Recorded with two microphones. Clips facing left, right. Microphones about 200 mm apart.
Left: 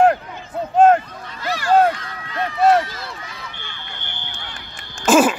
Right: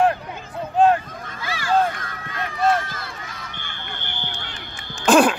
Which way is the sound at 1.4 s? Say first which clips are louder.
Left 5 dB; 50° left (ahead or behind).